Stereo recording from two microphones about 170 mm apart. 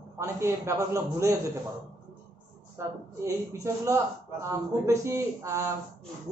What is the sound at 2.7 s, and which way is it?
A man's voice, 15° right (ahead or behind).